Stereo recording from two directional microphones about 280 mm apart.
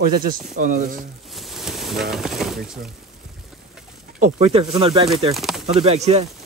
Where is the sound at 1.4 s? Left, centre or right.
Centre.